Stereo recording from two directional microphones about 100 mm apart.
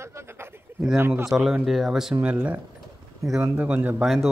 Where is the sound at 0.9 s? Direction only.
25° right (ahead or behind).